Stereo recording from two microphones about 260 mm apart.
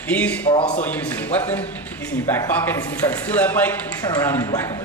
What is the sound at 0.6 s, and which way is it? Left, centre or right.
Speech, left.